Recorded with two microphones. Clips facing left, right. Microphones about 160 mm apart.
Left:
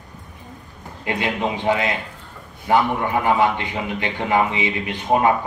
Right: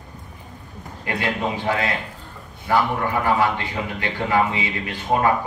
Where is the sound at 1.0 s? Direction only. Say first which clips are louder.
Left 1 dB; 20° left (ahead or behind).